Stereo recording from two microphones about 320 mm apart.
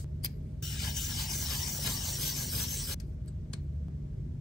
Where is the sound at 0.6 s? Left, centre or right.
Centre.